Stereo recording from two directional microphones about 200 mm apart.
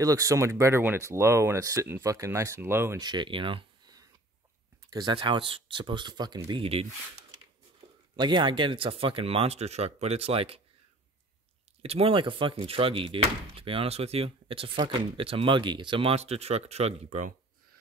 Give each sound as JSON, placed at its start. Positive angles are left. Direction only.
{"t": 0.0, "sound": "speech", "side_deg": -15}
{"t": 8.2, "sound": "speech", "side_deg": -25}
{"t": 11.8, "sound": "speech", "side_deg": -30}